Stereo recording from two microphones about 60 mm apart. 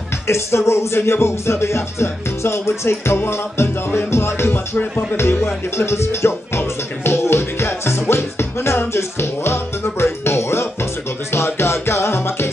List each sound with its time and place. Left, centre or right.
0.3 s music: left